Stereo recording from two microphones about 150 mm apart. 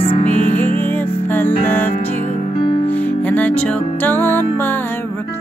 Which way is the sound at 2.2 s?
50° left (ahead or behind).